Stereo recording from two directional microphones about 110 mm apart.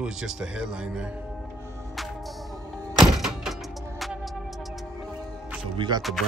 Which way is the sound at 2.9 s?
5° right (ahead or behind).